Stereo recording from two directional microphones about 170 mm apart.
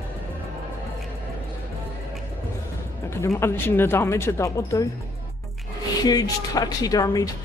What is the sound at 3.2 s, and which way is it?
Speech, 15° left (ahead or behind).